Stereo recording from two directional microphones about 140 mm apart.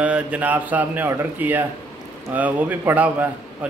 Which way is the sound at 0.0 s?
10° right (ahead or behind).